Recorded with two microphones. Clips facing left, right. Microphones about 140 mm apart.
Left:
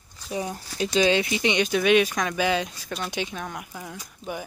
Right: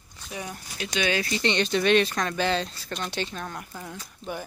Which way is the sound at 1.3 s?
10° left (ahead or behind).